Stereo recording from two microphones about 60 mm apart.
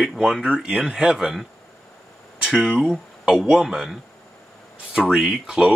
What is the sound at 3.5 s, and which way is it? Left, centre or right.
Speech, centre.